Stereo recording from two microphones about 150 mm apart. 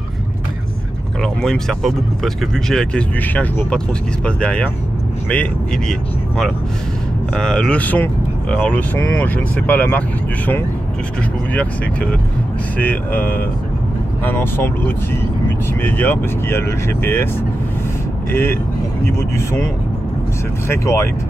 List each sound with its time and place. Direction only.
1.2 s speech: 5° left (ahead or behind)
12.7 s speech: 10° left (ahead or behind)
18.3 s speech: 15° left (ahead or behind)